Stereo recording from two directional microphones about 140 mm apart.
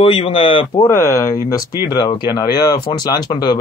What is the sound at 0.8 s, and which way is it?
A man's voice, 20° left (ahead or behind).